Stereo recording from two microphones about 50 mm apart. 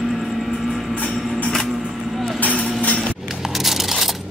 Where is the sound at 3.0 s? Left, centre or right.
Centre.